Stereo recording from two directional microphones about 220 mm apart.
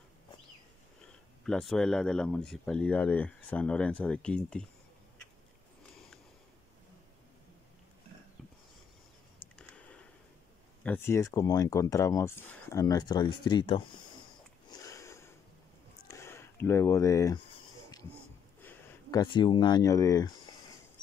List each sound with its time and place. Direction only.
1.4 s speech: centre (ahead or behind)
10.8 s speech: 10° left (ahead or behind)
14.7 s sniff: 15° left (ahead or behind)
16.1 s a sound: 10° left (ahead or behind)
18.6 s speech: 15° left (ahead or behind)